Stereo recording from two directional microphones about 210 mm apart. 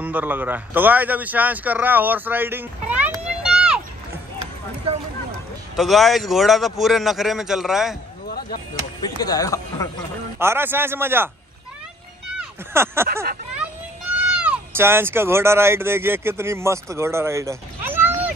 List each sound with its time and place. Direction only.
0.0 s a man's voice: 10° right (ahead or behind)
5.8 s a man's voice: centre (ahead or behind)
9.0 s speech: 20° left (ahead or behind)
10.4 s a man's voice: 10° right (ahead or behind)
12.4 s speech: 10° right (ahead or behind)
13.1 s speech: 45° right (ahead or behind)
14.3 s speech: 5° right (ahead or behind)